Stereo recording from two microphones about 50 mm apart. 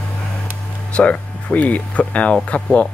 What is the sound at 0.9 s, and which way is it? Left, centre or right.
Speech, left.